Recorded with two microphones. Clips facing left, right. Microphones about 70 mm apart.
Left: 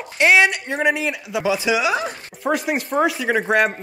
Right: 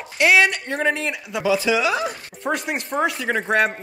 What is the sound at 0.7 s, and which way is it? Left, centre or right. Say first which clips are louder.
Speech: left 3 dB; centre.